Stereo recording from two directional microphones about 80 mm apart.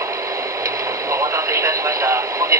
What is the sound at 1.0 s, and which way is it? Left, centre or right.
Radio, right.